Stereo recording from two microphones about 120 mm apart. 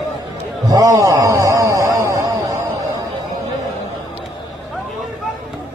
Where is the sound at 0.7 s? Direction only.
25° right (ahead or behind).